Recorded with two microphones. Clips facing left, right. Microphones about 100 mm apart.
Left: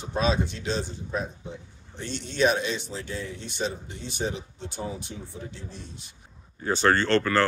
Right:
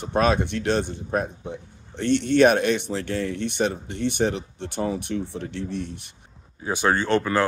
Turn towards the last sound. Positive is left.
turn(degrees=-15)  # may be behind; listen again after turning